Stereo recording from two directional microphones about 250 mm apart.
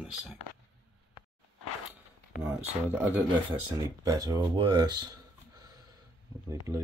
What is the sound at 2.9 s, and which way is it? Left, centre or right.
Speech, centre.